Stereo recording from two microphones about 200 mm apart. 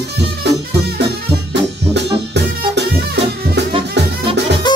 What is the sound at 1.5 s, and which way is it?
Music, 60° right (ahead or behind).